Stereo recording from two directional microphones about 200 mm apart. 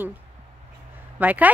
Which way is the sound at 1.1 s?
10° right (ahead or behind).